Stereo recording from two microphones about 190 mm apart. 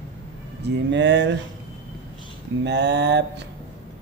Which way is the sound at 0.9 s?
65° right (ahead or behind).